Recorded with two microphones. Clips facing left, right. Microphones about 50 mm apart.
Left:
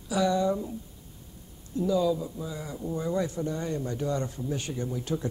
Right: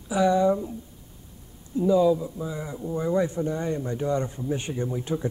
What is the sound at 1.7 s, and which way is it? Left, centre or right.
Speech, right.